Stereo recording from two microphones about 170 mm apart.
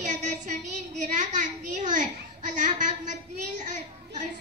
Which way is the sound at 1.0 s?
45° right (ahead or behind).